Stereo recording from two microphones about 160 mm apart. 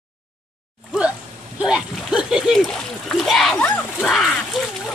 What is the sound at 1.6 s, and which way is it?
Speech, 5° right (ahead or behind).